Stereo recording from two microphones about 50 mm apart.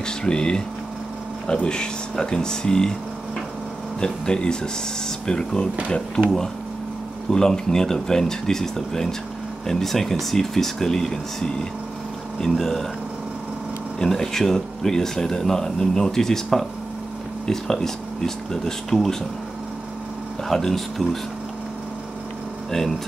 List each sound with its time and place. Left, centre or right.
0.0 s speech: centre
4.0 s speech: centre
7.2 s speech: centre
13.9 s speech: centre
20.4 s speech: centre
22.7 s speech: centre